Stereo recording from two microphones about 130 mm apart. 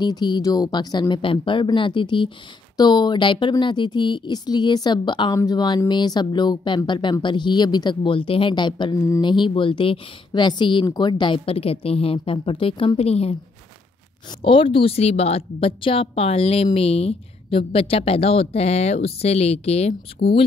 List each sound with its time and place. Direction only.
0.0 s speech: 35° left (ahead or behind)
5.3 s speech: 25° left (ahead or behind); by 13.4 s 50° left (ahead or behind)
14.4 s speech: 40° left (ahead or behind)